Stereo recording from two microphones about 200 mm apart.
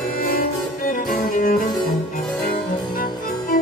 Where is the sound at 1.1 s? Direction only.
45° left (ahead or behind).